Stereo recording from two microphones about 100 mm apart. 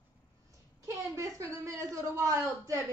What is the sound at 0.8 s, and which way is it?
Speech, 30° right (ahead or behind).